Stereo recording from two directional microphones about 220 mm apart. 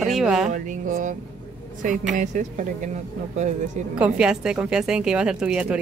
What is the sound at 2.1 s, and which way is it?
Speech, 35° right (ahead or behind).